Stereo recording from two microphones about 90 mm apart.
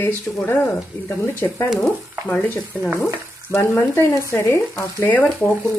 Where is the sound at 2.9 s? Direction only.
30° left (ahead or behind).